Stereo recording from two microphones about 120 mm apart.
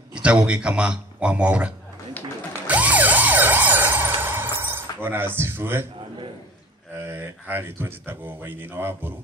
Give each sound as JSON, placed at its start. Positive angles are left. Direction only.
{"t": 0.1, "sound": "speech", "side_deg": -10}
{"t": 2.6, "sound": "emergency vehicle", "side_deg": -10}
{"t": 7.0, "sound": "speech", "side_deg": -20}